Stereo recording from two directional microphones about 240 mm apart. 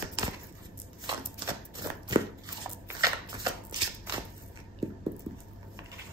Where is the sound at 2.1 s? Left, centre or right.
Centre.